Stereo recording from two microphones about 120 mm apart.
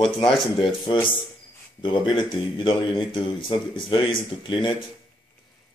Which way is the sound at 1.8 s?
40° left (ahead or behind).